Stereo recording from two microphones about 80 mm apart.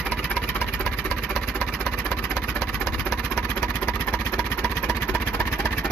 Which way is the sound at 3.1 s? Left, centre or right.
Centre.